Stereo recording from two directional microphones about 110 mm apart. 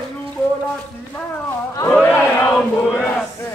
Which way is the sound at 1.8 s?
20° left (ahead or behind).